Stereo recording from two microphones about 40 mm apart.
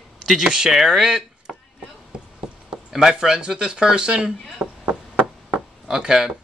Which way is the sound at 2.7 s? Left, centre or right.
Centre.